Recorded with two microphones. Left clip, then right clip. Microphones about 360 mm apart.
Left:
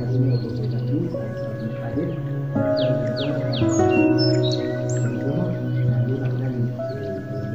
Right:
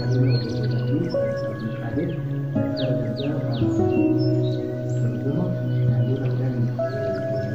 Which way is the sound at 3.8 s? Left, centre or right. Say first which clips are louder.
Left 3 dB; left.